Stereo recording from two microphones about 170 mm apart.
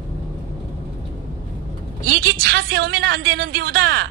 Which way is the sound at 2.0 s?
60° right (ahead or behind).